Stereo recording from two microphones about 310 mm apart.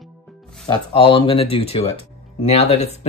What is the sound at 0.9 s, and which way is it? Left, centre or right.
Speech, centre.